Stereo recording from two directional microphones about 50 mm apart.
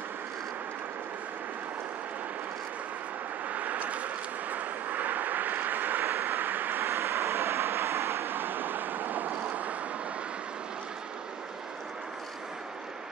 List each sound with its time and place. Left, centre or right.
3.4 s vehicle: right
6.8 s vehicle: right